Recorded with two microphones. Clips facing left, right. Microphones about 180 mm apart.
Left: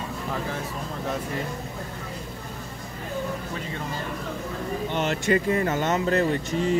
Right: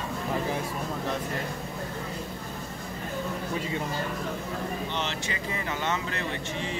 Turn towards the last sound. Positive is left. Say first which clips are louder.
# left 9 dB
turn(degrees=45)  # may be behind; listen again after turning